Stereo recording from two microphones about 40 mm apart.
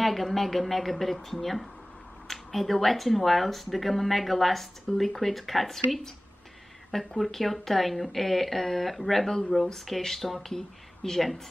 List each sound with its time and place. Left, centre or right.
0.0 s a woman's voice: centre
6.9 s a woman's voice: centre